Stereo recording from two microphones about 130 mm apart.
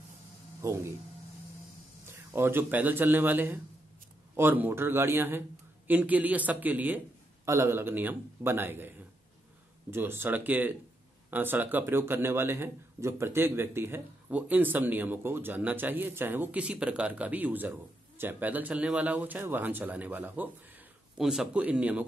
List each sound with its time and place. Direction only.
0.6 s speech: 20° right (ahead or behind)
2.0 s a man's voice: 20° right (ahead or behind)
7.4 s a man's voice: 25° right (ahead or behind)